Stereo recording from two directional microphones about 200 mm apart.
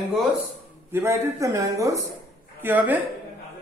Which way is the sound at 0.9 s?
15° right (ahead or behind).